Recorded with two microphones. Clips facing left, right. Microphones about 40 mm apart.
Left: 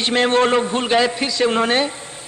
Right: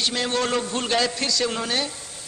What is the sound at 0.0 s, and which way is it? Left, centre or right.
A man's voice, left.